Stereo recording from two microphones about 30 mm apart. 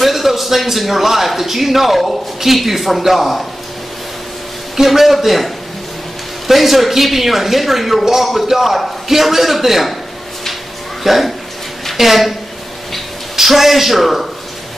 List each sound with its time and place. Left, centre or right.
0.0 s a man's voice: centre
4.8 s a man's voice: centre
8.0 s a man's voice: centre
11.1 s a man's voice: centre
13.4 s a man's voice: centre